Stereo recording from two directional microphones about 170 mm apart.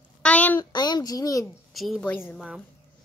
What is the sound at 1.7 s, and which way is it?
Speech, centre (ahead or behind).